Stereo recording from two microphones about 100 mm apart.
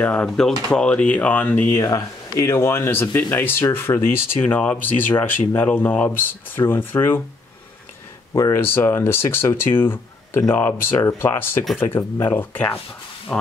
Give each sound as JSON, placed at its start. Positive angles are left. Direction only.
{"t": 0.0, "sound": "speech", "side_deg": 15}
{"t": 8.3, "sound": "speech", "side_deg": 35}
{"t": 13.3, "sound": "speech", "side_deg": 5}